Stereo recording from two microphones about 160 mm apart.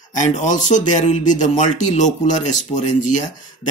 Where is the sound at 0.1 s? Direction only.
50° left (ahead or behind).